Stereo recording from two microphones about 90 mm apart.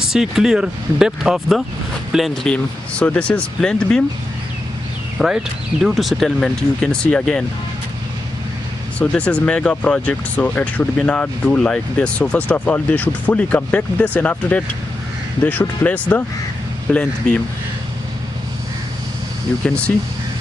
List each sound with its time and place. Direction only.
0.0 s speech: 5° right (ahead or behind)
2.4 s speech: 15° left (ahead or behind)
5.2 s speech: 5° right (ahead or behind); by 7.4 s 15° left (ahead or behind)
9.0 s speech: 15° left (ahead or behind)